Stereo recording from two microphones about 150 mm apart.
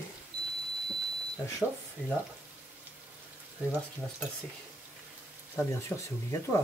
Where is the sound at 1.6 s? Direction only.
10° right (ahead or behind).